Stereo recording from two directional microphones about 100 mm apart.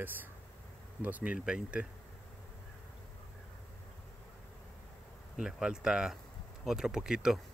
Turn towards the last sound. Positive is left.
turn(degrees=-5)  # may be behind; listen again after turning